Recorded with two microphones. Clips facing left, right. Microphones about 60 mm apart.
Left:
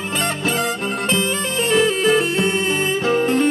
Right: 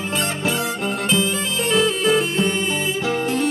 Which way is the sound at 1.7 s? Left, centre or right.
Left.